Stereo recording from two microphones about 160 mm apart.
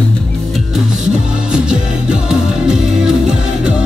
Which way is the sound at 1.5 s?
5° right (ahead or behind).